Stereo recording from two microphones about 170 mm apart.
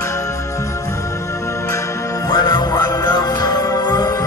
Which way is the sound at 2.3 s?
25° left (ahead or behind).